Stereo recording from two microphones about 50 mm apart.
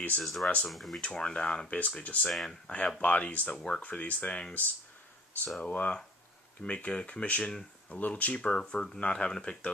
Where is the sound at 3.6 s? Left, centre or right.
Centre.